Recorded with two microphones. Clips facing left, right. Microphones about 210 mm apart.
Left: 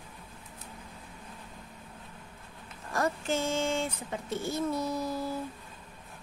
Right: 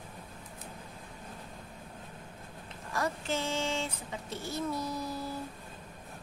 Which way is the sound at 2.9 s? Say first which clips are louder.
Left 3 dB; 45° left (ahead or behind).